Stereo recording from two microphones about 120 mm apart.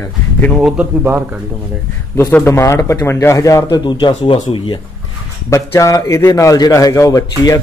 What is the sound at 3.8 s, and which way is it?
Speech, 40° left (ahead or behind).